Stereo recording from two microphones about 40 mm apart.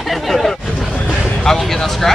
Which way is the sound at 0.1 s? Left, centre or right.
Centre.